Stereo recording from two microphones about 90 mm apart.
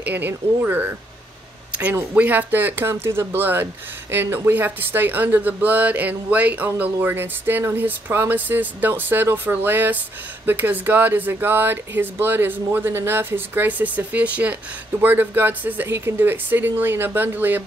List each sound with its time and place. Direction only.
0.0 s speech: 20° right (ahead or behind)
2.1 s speech: 20° right (ahead or behind)